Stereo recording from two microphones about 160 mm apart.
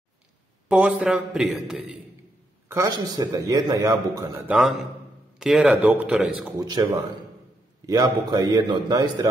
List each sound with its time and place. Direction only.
0.7 s a man's voice: 10° right (ahead or behind)
2.7 s a man's voice: 20° right (ahead or behind)
4.5 s a man's voice: centre (ahead or behind)
6.6 s a man's voice: 25° right (ahead or behind)